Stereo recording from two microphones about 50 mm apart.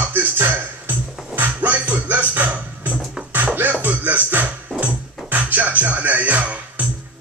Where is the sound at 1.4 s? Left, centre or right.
Right.